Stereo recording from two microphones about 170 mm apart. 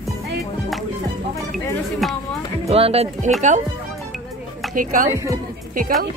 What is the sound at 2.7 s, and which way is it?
Speech, 35° right (ahead or behind).